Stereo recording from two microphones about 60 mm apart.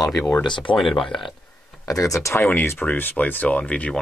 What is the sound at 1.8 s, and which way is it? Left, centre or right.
Speech, left.